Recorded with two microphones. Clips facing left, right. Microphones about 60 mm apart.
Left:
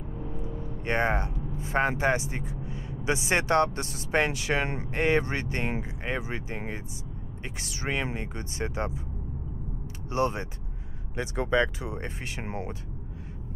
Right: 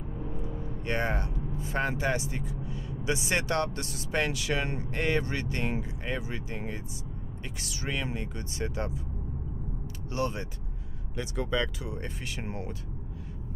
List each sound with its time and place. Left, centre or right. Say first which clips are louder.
0.4 s speech: left 1 dB; left
10.1 s speech: left 4 dB; left